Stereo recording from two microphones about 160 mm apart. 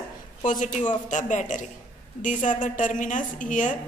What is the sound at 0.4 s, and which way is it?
A woman's voice, 55° left (ahead or behind).